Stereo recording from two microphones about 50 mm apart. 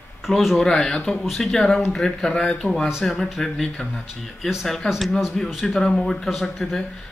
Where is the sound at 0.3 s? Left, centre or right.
Centre.